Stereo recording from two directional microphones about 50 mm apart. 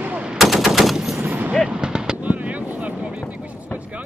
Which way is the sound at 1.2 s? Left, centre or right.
Right.